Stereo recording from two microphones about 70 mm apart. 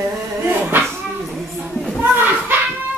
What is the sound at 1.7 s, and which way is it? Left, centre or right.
Speech, centre.